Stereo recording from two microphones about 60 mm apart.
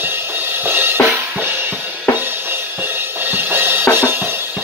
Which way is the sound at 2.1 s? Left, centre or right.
Right.